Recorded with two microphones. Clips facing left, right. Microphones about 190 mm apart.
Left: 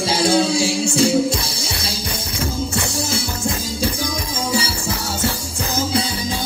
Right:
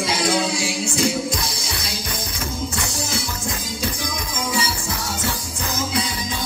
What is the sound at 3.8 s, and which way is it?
Music, 30° left (ahead or behind).